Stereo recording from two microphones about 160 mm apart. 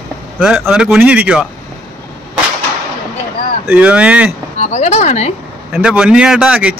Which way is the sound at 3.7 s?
10° right (ahead or behind).